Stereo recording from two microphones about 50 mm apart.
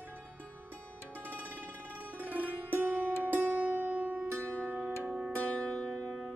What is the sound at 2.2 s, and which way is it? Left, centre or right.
Music, right.